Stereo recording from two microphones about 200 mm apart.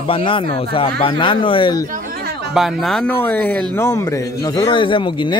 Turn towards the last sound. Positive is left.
turn(degrees=25)  # may be behind; listen again after turning